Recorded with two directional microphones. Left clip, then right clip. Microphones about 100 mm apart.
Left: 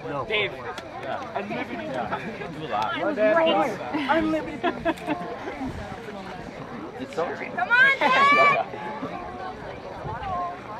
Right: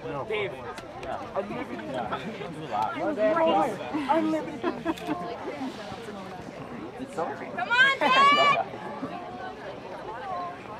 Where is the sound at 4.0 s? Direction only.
50° left (ahead or behind).